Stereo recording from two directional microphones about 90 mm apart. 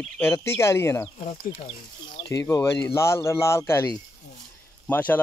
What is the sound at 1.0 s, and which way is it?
Speech, 90° left.